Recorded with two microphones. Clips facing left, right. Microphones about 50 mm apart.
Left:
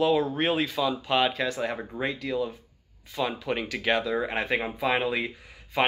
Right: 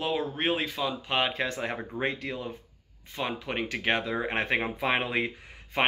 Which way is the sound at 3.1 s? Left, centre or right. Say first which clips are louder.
Left 3 dB; right.